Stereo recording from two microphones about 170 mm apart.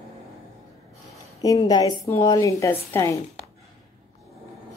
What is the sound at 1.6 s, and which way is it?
A woman's voice, 25° left (ahead or behind).